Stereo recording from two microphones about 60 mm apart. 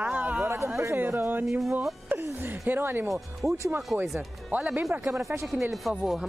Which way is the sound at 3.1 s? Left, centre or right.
Centre.